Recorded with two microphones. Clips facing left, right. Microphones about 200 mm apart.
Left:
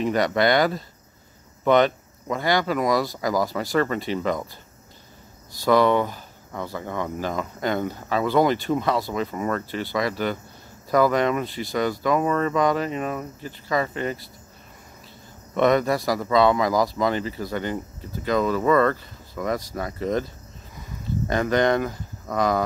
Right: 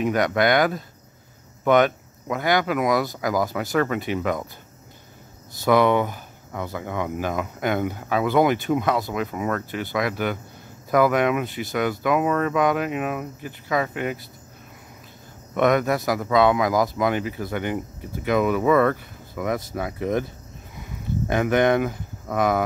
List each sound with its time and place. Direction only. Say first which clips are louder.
0.0 s speech: even; 5° right (ahead or behind)
5.7 s speech: even; 15° right (ahead or behind)
15.5 s speech: even; 5° right (ahead or behind)
16.9 s speech: right 1 dB; 15° right (ahead or behind)
20.0 s speech: even; 15° right (ahead or behind)
21.4 s speech: right 2 dB; 10° right (ahead or behind)